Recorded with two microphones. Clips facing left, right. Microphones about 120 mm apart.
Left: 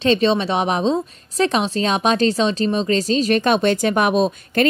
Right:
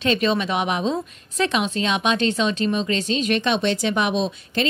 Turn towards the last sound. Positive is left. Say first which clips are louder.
# left 6 dB
turn(degrees=50)  # may be behind; listen again after turning